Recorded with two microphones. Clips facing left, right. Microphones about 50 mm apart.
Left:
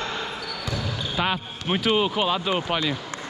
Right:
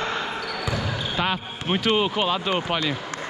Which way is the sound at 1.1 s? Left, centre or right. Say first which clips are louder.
Left 1 dB; centre.